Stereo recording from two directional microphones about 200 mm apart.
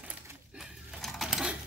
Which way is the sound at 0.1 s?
Centre (ahead or behind).